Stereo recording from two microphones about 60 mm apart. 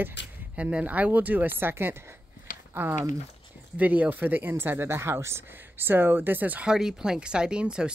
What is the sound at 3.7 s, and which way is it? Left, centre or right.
Speech, right.